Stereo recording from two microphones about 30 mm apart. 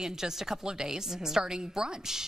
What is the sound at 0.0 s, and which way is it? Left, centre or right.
A woman's voice, centre.